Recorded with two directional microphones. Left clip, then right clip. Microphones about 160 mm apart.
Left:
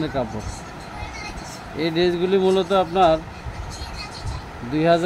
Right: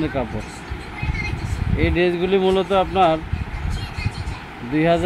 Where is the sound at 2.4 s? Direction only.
20° left (ahead or behind).